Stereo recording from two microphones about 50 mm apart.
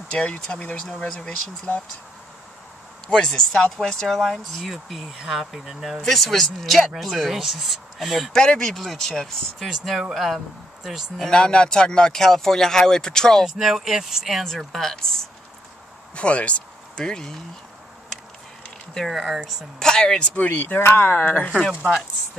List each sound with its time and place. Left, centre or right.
0.1 s speech: centre
3.1 s speech: centre
8.3 s speech: centre
9.6 s speech: centre
11.1 s speech: centre
13.5 s speech: centre
16.2 s speech: left
19.0 s speech: centre
19.8 s speech: centre
20.5 s speech: left
21.2 s speech: left
21.5 s speech: centre